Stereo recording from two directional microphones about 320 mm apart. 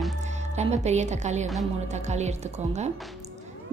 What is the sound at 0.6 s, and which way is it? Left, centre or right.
A woman's voice, right.